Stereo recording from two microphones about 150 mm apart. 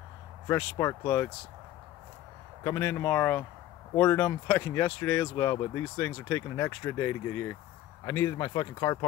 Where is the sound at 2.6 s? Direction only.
15° left (ahead or behind).